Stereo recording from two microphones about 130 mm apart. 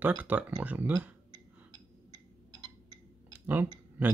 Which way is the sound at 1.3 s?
30° right (ahead or behind).